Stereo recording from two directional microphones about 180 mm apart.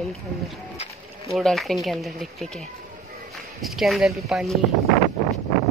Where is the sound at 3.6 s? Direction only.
Centre (ahead or behind).